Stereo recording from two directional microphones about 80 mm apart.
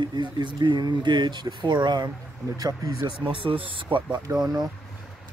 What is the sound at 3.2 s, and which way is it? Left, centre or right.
Speech, right.